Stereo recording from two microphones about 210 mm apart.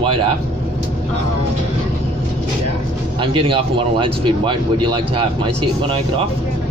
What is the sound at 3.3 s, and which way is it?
Speech, 25° right (ahead or behind).